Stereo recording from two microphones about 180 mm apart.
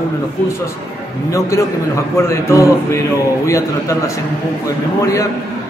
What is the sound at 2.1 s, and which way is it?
A man's voice, 15° left (ahead or behind).